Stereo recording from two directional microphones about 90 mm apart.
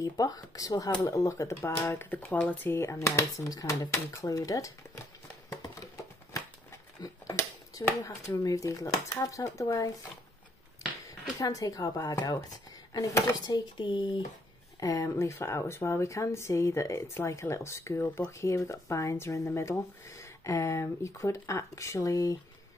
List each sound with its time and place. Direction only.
0.0 s speech: 40° left (ahead or behind)
2.0 s speech: 20° left (ahead or behind); by 5.0 s 35° left (ahead or behind)
7.7 s speech: 40° left (ahead or behind)
11.3 s speech: 40° left (ahead or behind)
13.5 s speech: 65° left (ahead or behind)
14.8 s speech: 35° left (ahead or behind)